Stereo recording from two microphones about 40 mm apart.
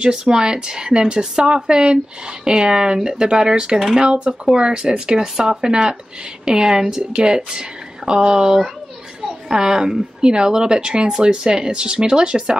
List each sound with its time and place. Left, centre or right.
0.0 s a woman's voice: centre